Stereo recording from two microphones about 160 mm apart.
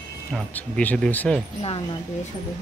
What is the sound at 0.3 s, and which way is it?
Speech, 5° left (ahead or behind).